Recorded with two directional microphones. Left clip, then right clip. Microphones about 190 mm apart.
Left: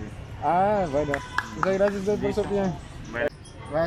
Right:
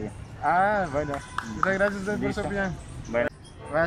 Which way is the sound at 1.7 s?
10° left (ahead or behind).